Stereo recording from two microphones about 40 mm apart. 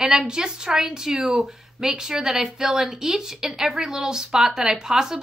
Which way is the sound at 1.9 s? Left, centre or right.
Centre.